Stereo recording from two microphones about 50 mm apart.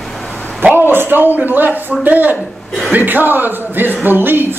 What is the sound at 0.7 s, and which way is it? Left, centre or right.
A man's voice, right.